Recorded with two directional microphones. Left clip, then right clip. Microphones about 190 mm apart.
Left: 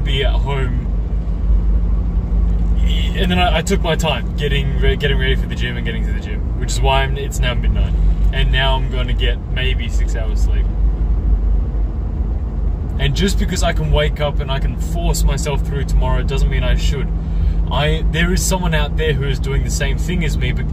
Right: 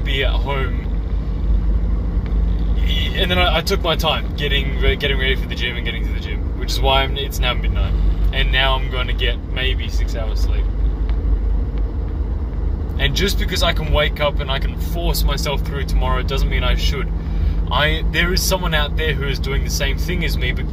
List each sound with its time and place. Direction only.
0.1 s speech: 15° left (ahead or behind)
3.2 s speech: 15° left (ahead or behind)
13.0 s speech: 15° left (ahead or behind)